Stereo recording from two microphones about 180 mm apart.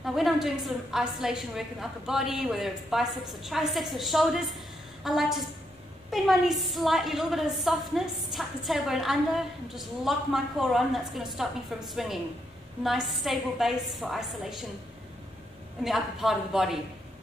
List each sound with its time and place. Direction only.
0.0 s a woman's voice: centre (ahead or behind)
15.8 s a woman's voice: centre (ahead or behind)